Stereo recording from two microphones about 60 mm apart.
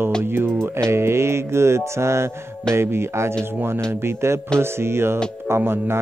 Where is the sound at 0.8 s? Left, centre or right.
Right.